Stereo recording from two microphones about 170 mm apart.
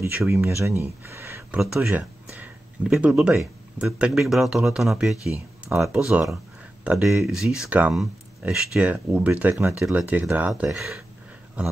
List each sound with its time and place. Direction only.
0.3 s speech: 15° right (ahead or behind)
1.6 s speech: 5° right (ahead or behind)